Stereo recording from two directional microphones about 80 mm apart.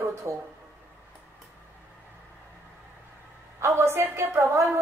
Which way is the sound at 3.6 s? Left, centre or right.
Right.